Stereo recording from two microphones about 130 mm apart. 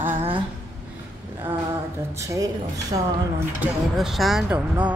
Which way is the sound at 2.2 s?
25° right (ahead or behind).